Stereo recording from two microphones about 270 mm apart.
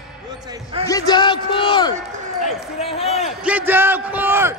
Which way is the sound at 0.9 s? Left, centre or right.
Centre.